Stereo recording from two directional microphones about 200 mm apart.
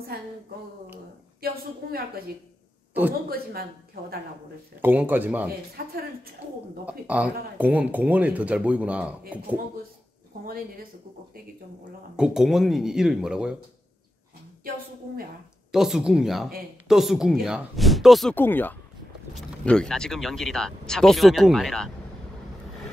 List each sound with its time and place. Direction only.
1.4 s a sound: 50° right (ahead or behind)
2.9 s a man's voice: 10° right (ahead or behind)
3.3 s speech: 50° right (ahead or behind)
4.8 s speech: 10° right (ahead or behind)
5.8 s speech: 50° right (ahead or behind)
6.9 s speech: 5° right (ahead or behind)
10.4 s speech: 45° right (ahead or behind)
12.2 s speech: centre (ahead or behind)
15.7 s speech: centre (ahead or behind)